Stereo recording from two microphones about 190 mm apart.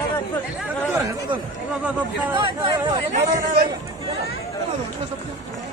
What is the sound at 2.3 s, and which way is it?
Speech, 25° right (ahead or behind).